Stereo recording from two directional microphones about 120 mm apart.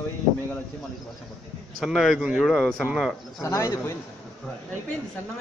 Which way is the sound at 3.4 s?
25° left (ahead or behind).